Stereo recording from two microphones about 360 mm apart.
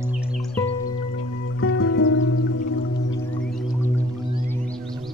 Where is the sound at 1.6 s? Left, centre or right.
Left.